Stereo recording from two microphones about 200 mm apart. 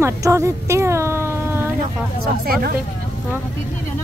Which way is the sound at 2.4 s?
50° right (ahead or behind).